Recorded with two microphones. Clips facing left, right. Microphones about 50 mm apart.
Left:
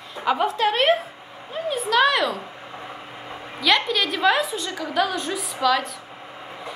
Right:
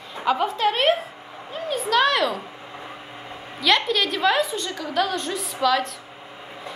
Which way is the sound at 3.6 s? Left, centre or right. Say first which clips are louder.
Even; centre.